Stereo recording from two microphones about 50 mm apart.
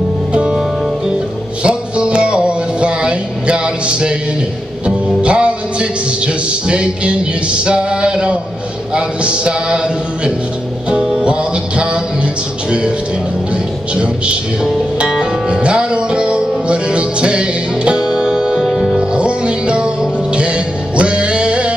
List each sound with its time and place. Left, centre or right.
0.3 s music: centre
1.6 s music: right
8.9 s a sound: right
10.9 s music: centre
18.6 s music: centre
19.1 s music: right